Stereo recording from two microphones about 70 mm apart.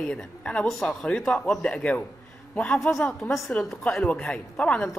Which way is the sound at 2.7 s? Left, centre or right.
Centre.